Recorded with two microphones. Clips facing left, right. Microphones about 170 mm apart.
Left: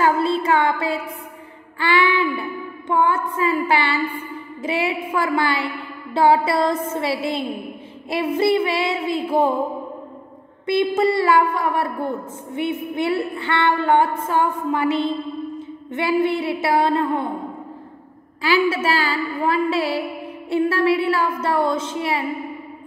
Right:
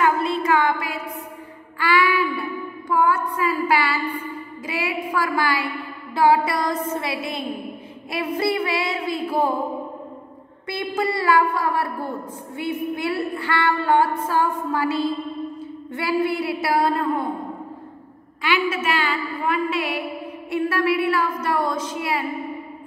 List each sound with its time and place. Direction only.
0.0 s a sound: 30° left (ahead or behind)
1.8 s music: 25° left (ahead or behind)
2.9 s a sound: 25° left (ahead or behind)
4.6 s a woman's voice: 25° left (ahead or behind)
10.7 s a woman's voice: 25° left (ahead or behind)
18.4 s a woman's voice: 35° left (ahead or behind)